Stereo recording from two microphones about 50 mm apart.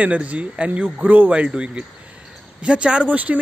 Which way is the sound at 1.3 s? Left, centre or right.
Right.